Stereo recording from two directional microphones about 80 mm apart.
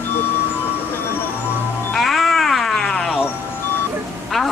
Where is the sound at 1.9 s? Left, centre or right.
Centre.